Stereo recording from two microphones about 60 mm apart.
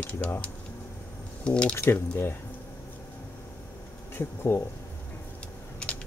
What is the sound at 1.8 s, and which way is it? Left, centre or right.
Speech, left.